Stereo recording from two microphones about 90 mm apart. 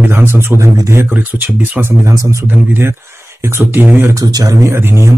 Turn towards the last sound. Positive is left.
turn(degrees=-25)  # may be behind; listen again after turning